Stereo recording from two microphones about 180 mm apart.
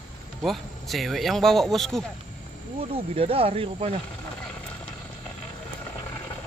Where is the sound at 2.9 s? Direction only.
30° right (ahead or behind).